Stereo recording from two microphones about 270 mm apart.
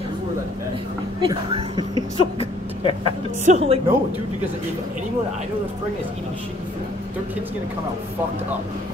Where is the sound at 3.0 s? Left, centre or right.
Right.